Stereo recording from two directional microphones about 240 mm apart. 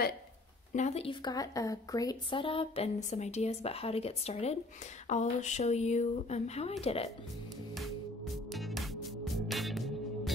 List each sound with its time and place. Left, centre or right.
0.7 s speech: left
8.5 s music: centre